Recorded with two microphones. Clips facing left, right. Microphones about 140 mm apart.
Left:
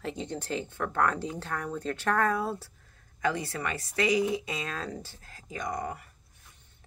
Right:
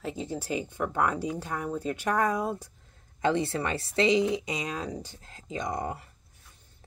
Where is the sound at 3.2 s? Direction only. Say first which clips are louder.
Right 4 dB; 25° right (ahead or behind).